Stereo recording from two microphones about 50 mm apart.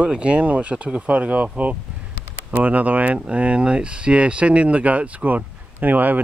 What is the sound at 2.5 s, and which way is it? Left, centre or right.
Speech, right.